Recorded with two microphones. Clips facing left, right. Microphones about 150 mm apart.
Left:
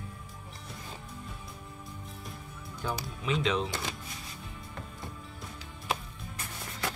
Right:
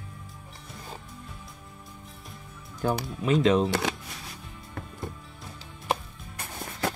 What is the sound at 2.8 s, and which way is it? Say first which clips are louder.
Speech: right 7 dB; 50° right (ahead or behind).